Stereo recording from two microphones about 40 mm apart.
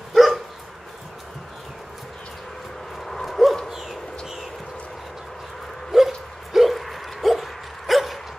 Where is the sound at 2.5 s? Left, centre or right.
Centre.